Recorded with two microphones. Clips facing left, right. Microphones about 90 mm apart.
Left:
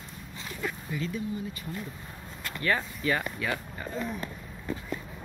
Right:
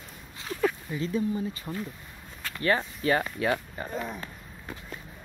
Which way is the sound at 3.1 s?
40° right (ahead or behind).